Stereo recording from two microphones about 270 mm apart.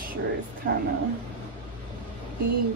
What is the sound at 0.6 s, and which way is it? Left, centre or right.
Speech, right.